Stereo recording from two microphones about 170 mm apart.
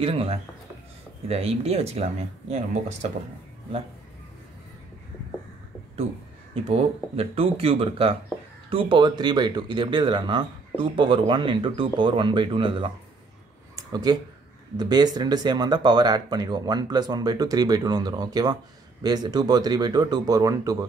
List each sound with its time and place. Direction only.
0.0 s speech: 35° right (ahead or behind)
6.5 s speech: 35° right (ahead or behind)
13.7 s a sound: 25° right (ahead or behind)
14.8 s speech: 25° right (ahead or behind)